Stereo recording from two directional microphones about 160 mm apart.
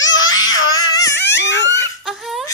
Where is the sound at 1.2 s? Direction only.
90° left.